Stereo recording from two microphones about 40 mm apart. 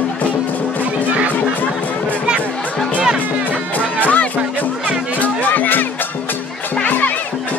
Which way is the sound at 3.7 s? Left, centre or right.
Left.